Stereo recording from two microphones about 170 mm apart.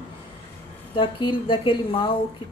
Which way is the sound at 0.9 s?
30° left (ahead or behind).